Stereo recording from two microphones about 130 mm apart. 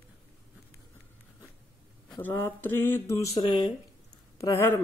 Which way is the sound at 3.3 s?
50° left (ahead or behind).